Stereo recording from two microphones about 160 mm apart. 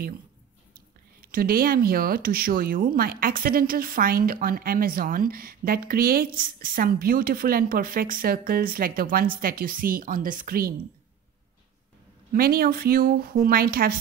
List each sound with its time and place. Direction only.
0.7 s speech: 65° right (ahead or behind)
12.3 s speech: 65° right (ahead or behind)